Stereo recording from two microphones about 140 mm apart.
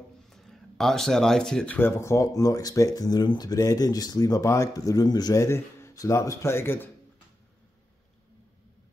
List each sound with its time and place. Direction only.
0.3 s speech: centre (ahead or behind)